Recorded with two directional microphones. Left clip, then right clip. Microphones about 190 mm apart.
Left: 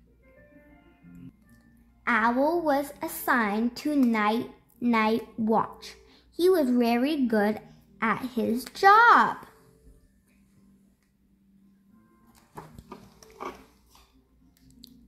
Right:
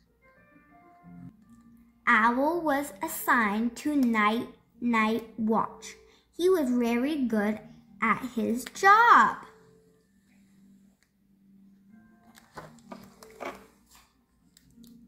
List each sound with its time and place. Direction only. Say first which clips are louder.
2.0 s a child's voice: right 1 dB; 45° left (ahead or behind)